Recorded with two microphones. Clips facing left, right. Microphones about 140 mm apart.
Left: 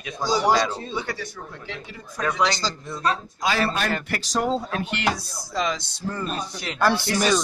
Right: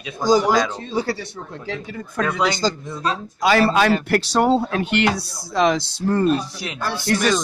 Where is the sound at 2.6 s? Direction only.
45° right (ahead or behind).